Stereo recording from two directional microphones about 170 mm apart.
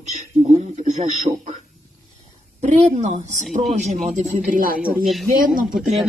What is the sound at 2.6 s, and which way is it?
Speech, 40° right (ahead or behind).